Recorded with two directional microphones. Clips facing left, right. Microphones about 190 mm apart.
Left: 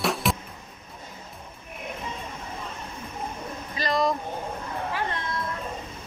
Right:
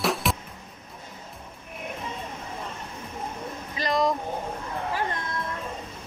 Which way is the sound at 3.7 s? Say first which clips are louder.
Even; 15° right (ahead or behind).